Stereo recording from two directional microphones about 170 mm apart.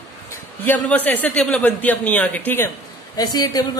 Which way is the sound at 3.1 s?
25° left (ahead or behind).